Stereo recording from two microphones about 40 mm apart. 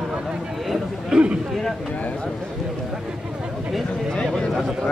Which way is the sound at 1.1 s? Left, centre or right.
Centre.